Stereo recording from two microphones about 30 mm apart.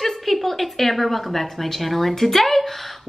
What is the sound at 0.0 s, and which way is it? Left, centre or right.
A woman's voice, centre.